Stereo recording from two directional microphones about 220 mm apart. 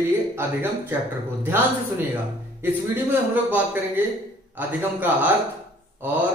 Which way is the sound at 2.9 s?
10° right (ahead or behind).